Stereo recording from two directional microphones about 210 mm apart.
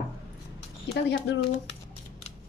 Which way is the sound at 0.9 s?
55° left (ahead or behind).